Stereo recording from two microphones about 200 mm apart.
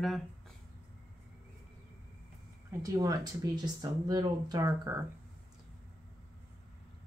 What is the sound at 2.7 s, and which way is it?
Speech, 15° right (ahead or behind).